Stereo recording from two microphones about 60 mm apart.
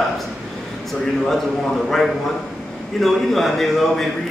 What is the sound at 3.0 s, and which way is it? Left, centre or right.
A man's voice, centre.